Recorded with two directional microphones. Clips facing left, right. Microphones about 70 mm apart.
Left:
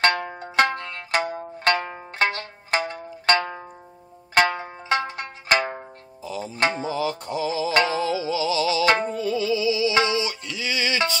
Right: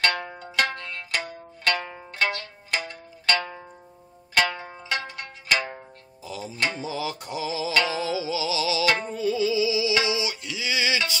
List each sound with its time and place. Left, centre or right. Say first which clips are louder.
0.0 s music: left 4 dB; left
6.9 s music: left 5 dB; centre
8.8 s music: left 5 dB; left
9.1 s music: even; centre